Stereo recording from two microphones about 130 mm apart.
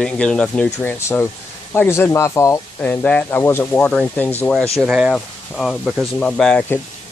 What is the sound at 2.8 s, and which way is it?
Speech, 10° left (ahead or behind).